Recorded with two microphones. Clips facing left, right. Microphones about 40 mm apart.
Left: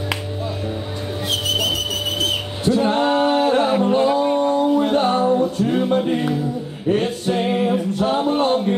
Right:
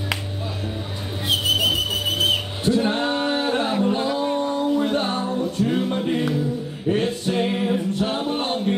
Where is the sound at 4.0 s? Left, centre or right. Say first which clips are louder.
Left 6 dB; left.